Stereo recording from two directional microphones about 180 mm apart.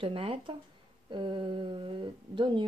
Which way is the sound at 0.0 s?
30° right (ahead or behind).